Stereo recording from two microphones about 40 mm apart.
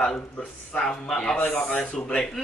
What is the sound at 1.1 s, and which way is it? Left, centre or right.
Speech, centre.